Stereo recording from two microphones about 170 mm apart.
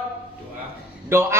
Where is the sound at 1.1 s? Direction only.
15° right (ahead or behind).